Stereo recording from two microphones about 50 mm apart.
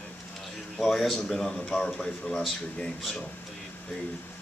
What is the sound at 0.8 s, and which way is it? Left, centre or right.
Speech, centre.